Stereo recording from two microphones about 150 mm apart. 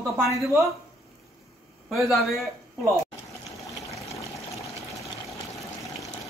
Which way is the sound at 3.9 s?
20° left (ahead or behind).